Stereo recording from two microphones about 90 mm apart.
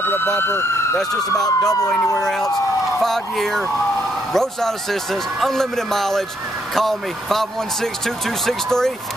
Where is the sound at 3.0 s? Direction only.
5° left (ahead or behind).